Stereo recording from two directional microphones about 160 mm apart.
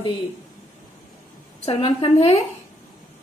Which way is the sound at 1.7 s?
35° left (ahead or behind).